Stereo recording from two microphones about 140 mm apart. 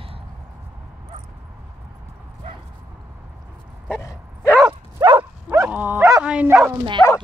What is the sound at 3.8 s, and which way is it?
Bow-wow, 20° left (ahead or behind).